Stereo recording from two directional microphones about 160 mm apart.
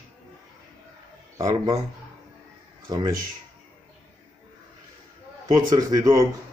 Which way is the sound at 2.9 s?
25° right (ahead or behind).